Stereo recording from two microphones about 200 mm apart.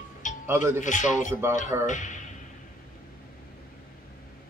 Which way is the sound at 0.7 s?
40° left (ahead or behind).